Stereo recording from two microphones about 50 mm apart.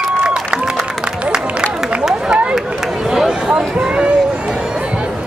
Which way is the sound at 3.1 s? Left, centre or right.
Centre.